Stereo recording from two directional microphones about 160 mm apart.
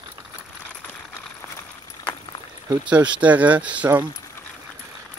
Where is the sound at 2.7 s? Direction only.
10° right (ahead or behind).